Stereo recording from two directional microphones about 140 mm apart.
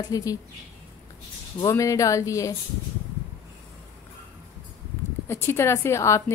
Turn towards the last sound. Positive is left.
turn(degrees=20)  # may be behind; listen again after turning